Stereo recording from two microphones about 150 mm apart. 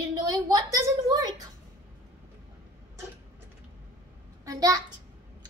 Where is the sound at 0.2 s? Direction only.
25° right (ahead or behind).